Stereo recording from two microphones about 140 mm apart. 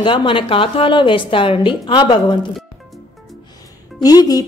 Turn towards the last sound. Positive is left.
turn(degrees=25)  # may be behind; listen again after turning